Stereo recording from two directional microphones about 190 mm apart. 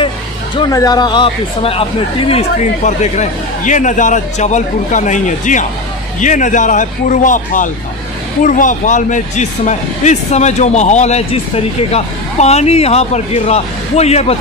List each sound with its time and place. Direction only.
0.6 s speech: 20° left (ahead or behind); by 14.3 s 35° left (ahead or behind)